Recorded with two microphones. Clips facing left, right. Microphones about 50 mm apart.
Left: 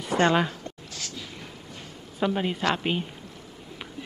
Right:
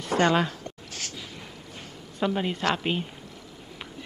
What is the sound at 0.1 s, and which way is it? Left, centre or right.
Speech, centre.